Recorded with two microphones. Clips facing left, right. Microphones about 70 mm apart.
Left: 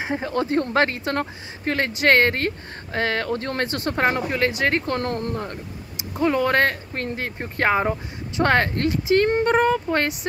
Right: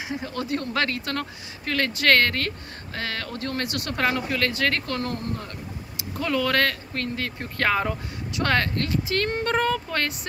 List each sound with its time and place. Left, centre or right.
0.0 s speech: left
4.9 s speech: left
5.9 s speech: left